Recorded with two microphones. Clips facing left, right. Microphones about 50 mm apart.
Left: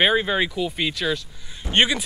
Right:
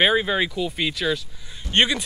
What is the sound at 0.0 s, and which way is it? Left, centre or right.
Speech, centre.